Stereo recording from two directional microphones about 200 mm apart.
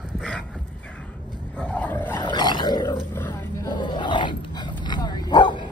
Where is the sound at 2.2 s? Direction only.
20° left (ahead or behind).